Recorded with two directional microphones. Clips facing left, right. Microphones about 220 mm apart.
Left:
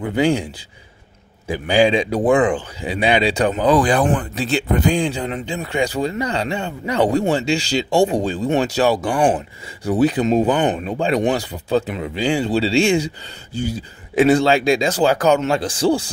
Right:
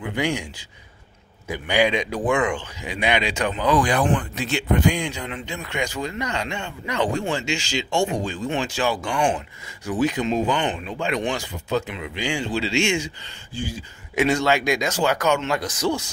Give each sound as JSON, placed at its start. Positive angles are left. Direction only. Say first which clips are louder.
{"t": 0.0, "sound": "speech", "louder": "left 7 dB", "side_deg": 35}
{"t": 1.5, "sound": "speech", "louder": "left 5 dB", "side_deg": 30}